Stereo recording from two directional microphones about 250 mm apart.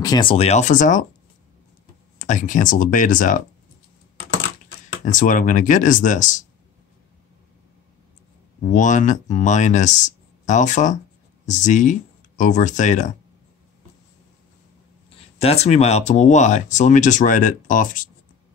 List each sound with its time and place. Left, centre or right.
0.0 s speech: centre
2.1 s speech: left
5.0 s speech: left
8.7 s speech: left
15.3 s speech: left